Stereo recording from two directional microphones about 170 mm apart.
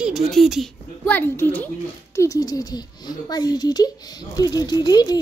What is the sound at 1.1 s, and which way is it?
Speech, 10° left (ahead or behind).